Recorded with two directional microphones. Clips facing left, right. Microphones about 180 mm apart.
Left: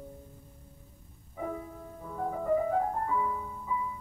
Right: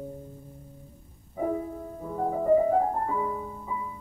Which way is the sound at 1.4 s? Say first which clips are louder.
Right 8 dB; 35° right (ahead or behind).